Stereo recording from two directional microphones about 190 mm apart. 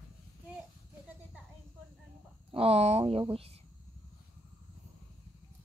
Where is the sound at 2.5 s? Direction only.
30° right (ahead or behind).